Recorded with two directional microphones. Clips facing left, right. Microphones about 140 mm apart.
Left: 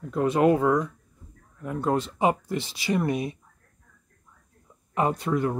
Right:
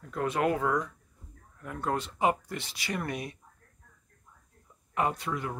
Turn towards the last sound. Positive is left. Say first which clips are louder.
# left 9 dB
turn(degrees=45)  # may be behind; listen again after turning